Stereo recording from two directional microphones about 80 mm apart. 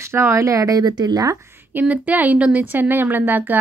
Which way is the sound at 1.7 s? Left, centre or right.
Right.